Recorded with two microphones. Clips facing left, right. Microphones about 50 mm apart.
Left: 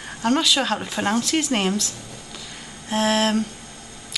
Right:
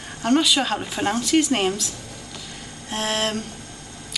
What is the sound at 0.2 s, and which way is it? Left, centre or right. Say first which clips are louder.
Speech: right 1 dB; centre.